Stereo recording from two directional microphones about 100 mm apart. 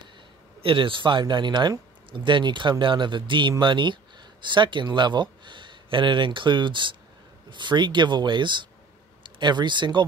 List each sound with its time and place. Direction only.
0.6 s speech: 60° right (ahead or behind)